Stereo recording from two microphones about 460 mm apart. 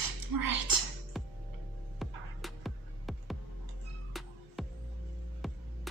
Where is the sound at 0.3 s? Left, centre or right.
Right.